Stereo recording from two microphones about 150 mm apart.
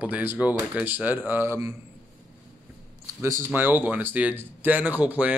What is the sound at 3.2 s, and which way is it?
Speech, 20° right (ahead or behind).